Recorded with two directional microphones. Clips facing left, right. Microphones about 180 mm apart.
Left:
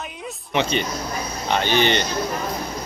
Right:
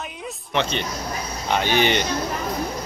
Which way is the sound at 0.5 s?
10° left (ahead or behind).